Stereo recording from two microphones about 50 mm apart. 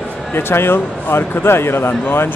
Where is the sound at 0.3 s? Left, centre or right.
Left.